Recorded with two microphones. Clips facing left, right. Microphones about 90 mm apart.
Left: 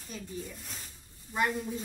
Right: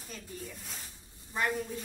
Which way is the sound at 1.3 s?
5° left (ahead or behind).